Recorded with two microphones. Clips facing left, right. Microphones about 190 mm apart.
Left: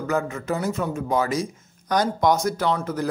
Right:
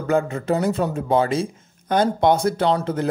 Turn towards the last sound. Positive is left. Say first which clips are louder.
# right 4 dB
turn(degrees=-30)  # may be behind; listen again after turning